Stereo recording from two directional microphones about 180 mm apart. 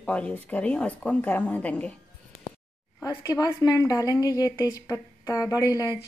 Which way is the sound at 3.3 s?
15° left (ahead or behind).